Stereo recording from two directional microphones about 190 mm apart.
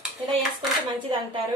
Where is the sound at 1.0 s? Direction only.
30° right (ahead or behind).